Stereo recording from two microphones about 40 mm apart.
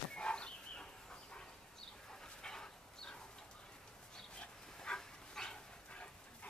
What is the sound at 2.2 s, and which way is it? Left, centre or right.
Dog, centre.